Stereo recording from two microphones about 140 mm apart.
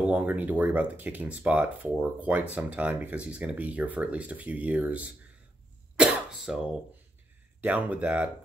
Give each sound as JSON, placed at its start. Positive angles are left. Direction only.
{"t": 0.0, "sound": "speech", "side_deg": -10}
{"t": 5.9, "sound": "cough", "side_deg": -5}
{"t": 7.6, "sound": "speech", "side_deg": -10}